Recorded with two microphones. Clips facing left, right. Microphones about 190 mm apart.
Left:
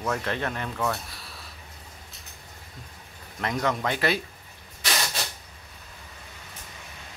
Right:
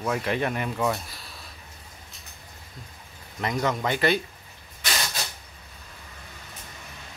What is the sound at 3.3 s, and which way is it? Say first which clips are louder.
Speech: right 1 dB; centre (ahead or behind).